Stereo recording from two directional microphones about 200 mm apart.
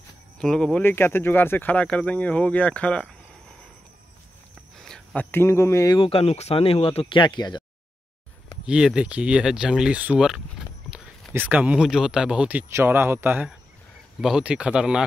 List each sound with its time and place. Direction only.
0.4 s speech: 5° left (ahead or behind)
4.8 s speech: 5° left (ahead or behind); by 7.6 s 20° left (ahead or behind)
8.6 s speech: 5° right (ahead or behind)